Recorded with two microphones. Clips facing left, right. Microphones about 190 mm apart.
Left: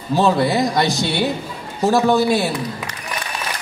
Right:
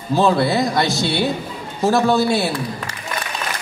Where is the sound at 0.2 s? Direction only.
15° left (ahead or behind).